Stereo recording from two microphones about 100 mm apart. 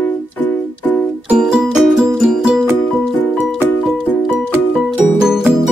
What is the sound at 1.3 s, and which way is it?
Music, 5° right (ahead or behind).